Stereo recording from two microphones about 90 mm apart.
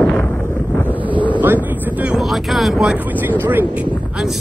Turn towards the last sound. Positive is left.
turn(degrees=-20)  # may be behind; listen again after turning